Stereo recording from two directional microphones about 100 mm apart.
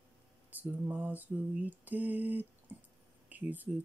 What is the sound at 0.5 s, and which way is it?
Mantra, 15° right (ahead or behind).